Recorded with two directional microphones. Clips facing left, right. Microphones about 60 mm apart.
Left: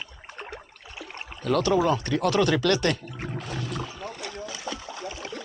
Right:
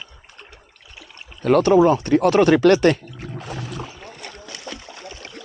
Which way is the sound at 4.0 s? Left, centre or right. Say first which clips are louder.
Left 3 dB; centre.